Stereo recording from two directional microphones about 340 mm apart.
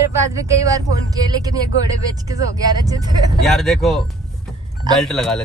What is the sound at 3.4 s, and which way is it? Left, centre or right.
Speech, centre.